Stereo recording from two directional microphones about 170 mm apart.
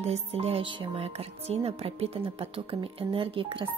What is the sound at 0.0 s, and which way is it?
Speech, 35° right (ahead or behind).